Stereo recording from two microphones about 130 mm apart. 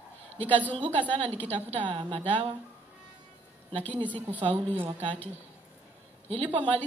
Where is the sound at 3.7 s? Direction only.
45° right (ahead or behind).